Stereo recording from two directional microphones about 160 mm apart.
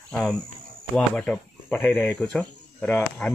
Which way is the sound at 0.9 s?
5° left (ahead or behind).